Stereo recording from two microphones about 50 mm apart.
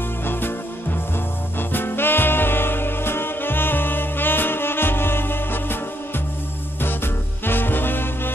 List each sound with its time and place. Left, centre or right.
0.2 s music: left
7.4 s music: left